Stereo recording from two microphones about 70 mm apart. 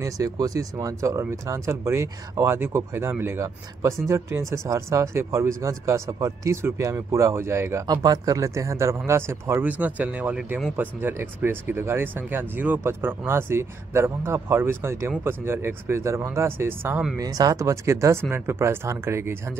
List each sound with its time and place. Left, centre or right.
0.0 s speech: right
7.8 s speech: right
9.7 s speech: right
17.2 s speech: right